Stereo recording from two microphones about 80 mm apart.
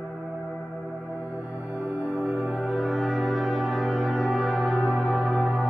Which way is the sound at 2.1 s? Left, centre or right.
Centre.